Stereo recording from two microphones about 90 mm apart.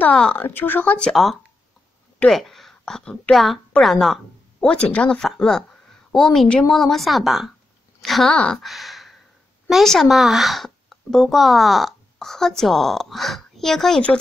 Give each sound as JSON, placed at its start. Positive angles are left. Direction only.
{"t": 0.1, "sound": "speech", "side_deg": 10}
{"t": 0.4, "sound": "speech", "side_deg": 20}
{"t": 1.1, "sound": "a woman's voice", "side_deg": 0}